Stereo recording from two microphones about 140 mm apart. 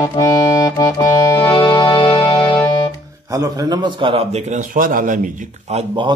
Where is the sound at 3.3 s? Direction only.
25° right (ahead or behind); by 4.6 s 45° right (ahead or behind).